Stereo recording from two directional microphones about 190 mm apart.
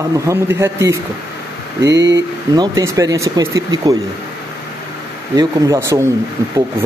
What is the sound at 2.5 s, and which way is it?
Speech, 20° right (ahead or behind).